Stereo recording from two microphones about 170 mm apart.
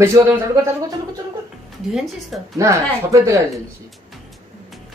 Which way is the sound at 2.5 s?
20° right (ahead or behind).